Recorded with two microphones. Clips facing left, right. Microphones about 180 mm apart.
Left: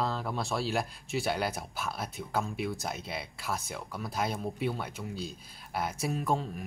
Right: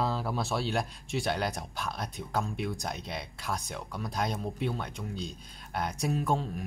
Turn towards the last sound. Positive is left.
turn(degrees=0)  # may be behind; listen again after turning